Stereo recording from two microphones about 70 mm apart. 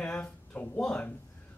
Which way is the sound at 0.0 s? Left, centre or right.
Centre.